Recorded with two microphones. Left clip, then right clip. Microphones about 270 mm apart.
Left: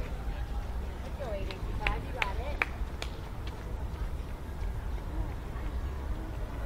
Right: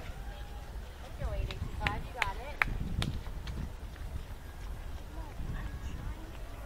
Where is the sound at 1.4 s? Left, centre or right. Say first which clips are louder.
Left 2 dB; right.